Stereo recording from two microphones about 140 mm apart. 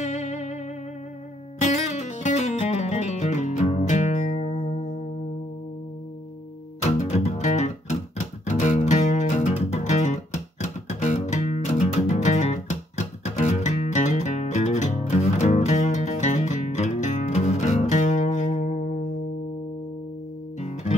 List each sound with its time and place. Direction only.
0.0 s music: 55° left (ahead or behind)
1.6 s music: 55° left (ahead or behind)
6.8 s music: 50° left (ahead or behind)
20.5 s music: 55° left (ahead or behind)